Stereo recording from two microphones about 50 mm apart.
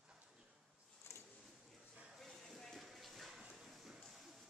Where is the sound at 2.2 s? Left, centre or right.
Centre.